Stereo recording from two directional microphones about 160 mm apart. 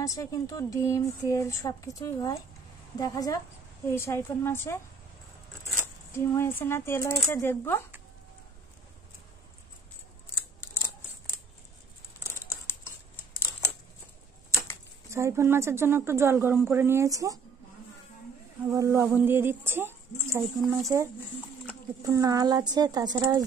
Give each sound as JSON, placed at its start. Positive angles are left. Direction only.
{"t": 0.0, "sound": "speech", "side_deg": 20}
{"t": 10.3, "sound": "scissors", "side_deg": 15}
{"t": 15.0, "sound": "speech", "side_deg": -15}
{"t": 18.8, "sound": "speech", "side_deg": -15}
{"t": 22.0, "sound": "a woman's voice", "side_deg": -20}